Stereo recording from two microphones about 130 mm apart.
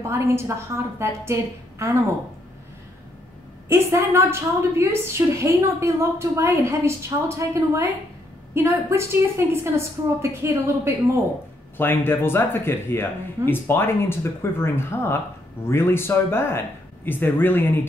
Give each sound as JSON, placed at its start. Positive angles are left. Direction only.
{"t": 0.0, "sound": "a woman's voice", "side_deg": -20}
{"t": 3.6, "sound": "a woman's voice", "side_deg": -20}
{"t": 11.7, "sound": "speech", "side_deg": 15}